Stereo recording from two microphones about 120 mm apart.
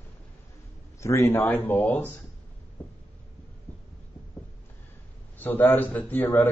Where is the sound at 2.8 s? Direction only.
15° left (ahead or behind).